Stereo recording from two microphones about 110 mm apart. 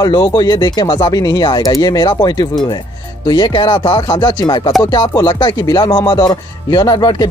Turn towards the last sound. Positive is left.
turn(degrees=40)  # may be behind; listen again after turning